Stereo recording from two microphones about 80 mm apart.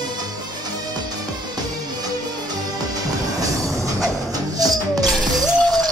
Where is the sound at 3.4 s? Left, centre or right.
Right.